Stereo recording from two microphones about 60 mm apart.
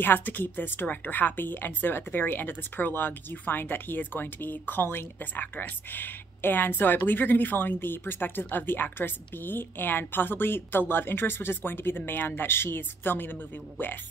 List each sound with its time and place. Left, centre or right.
0.0 s speech: left